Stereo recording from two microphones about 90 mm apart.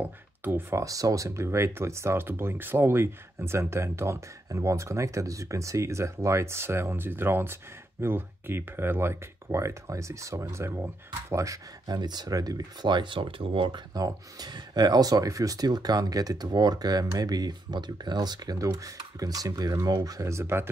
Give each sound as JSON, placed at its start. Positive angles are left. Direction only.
{"t": 0.0, "sound": "speech", "side_deg": -20}
{"t": 0.8, "sound": "speech", "side_deg": -40}
{"t": 12.0, "sound": "speech", "side_deg": -50}
{"t": 13.9, "sound": "speech", "side_deg": -45}